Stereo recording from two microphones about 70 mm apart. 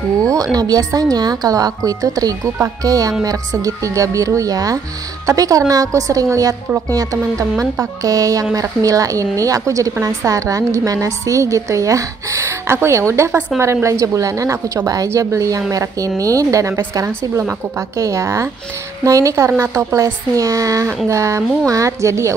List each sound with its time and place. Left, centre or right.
0.3 s a woman's voice: right
13.5 s a woman's voice: centre
13.8 s a woman's voice: right